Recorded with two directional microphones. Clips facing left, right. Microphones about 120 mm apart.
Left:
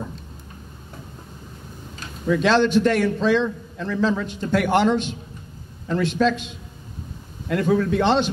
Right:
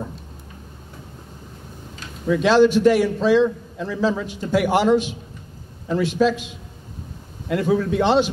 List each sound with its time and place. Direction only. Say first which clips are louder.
2.2 s a man's voice: right 3 dB; 10° right (ahead or behind)